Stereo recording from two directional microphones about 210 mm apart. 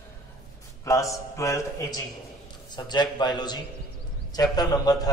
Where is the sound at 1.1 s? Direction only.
15° left (ahead or behind).